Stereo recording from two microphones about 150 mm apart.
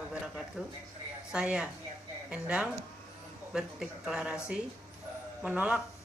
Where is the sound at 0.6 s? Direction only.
5° right (ahead or behind).